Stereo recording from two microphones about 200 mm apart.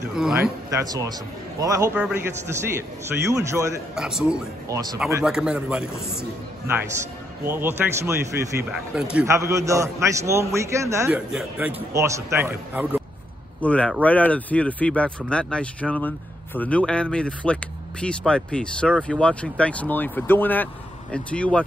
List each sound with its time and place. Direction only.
0.1 s speech: 5° right (ahead or behind)
0.7 s a man's voice: 15° right (ahead or behind)
3.9 s speech: 5° right (ahead or behind)
4.7 s a man's voice: 15° right (ahead or behind)
5.2 s speech: 5° right (ahead or behind)
7.4 s a man's voice: 10° right (ahead or behind)
8.7 s a man's voice: 5° right (ahead or behind)
11.9 s a man's voice: 15° right (ahead or behind)
13.6 s speech: 5° left (ahead or behind)